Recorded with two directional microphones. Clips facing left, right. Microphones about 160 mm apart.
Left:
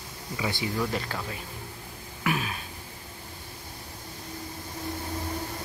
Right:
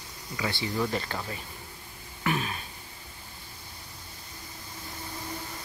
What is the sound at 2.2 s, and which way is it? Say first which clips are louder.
Speech: even; 5° left (ahead or behind).